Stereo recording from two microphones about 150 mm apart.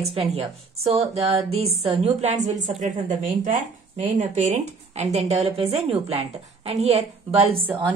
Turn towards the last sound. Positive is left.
turn(degrees=-40)  # may be behind; listen again after turning